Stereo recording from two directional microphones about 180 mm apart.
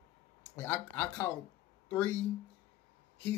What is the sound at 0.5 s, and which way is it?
Speech, 10° left (ahead or behind).